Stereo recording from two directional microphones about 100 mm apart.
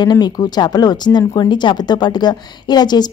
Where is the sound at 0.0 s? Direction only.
45° left (ahead or behind).